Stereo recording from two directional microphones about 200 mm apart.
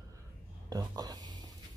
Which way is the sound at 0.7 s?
20° right (ahead or behind).